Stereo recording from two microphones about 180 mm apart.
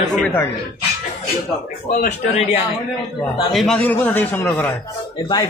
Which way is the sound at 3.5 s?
Centre (ahead or behind).